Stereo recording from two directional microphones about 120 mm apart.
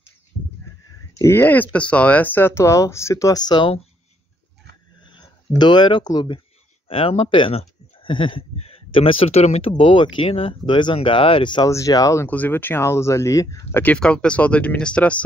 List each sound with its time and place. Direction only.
1.1 s speech: 20° left (ahead or behind); by 3.7 s 40° left (ahead or behind)
5.0 s speech: 40° left (ahead or behind)
6.9 s speech: 50° left (ahead or behind)
10.2 s speech: 55° left (ahead or behind)
11.7 s speech: 30° left (ahead or behind)
12.3 s speech: 15° left (ahead or behind)
13.9 s speech: 5° left (ahead or behind)